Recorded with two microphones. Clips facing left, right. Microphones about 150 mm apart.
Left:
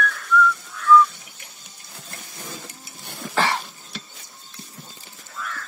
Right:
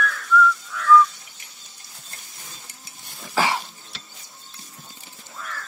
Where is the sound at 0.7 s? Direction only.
90° right.